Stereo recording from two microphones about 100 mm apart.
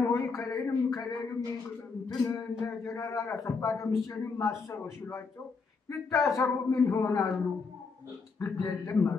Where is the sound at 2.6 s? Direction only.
30° left (ahead or behind).